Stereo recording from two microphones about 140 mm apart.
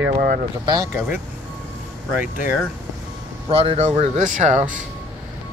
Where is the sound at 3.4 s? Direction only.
45° right (ahead or behind).